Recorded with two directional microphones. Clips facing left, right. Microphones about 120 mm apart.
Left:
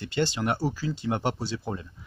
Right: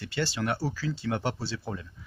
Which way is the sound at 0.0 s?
20° left (ahead or behind).